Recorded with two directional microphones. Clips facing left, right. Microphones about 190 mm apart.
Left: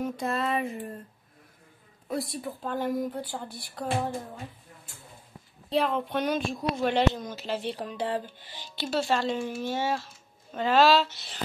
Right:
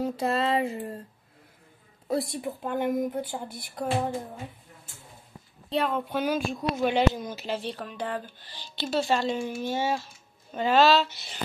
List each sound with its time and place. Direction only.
0.0 s a sound: 30° right (ahead or behind)
2.0 s speech: 25° right (ahead or behind)
5.7 s speech: centre (ahead or behind)
7.6 s speech: 20° left (ahead or behind)
7.9 s speech: 30° left (ahead or behind)
8.7 s speech: 5° left (ahead or behind)